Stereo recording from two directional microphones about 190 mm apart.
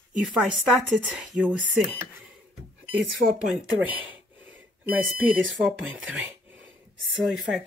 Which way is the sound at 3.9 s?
10° right (ahead or behind).